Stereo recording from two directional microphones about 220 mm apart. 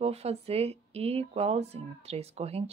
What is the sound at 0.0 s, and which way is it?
Speech, 30° right (ahead or behind).